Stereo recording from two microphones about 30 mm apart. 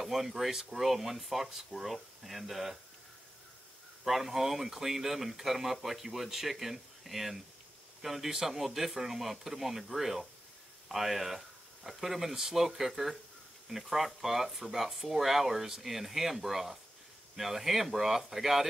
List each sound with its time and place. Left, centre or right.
0.0 s speech: centre
0.5 s speech: centre
0.7 s speech: centre
4.0 s speech: centre